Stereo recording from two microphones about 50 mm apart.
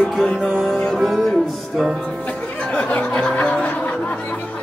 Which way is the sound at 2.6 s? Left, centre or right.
Left.